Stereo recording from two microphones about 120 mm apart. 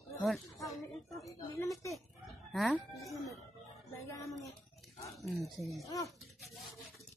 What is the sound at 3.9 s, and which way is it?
Speech, 25° left (ahead or behind).